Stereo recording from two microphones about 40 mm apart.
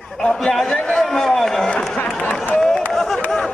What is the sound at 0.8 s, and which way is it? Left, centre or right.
Speech, centre.